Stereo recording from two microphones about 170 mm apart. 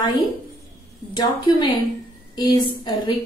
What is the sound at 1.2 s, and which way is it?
A woman's voice, 25° left (ahead or behind).